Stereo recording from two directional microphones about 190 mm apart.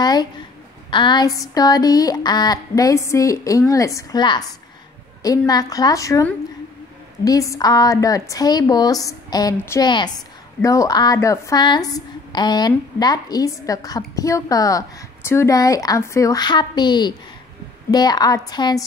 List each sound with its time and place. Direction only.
0.0 s a woman's voice: 20° left (ahead or behind)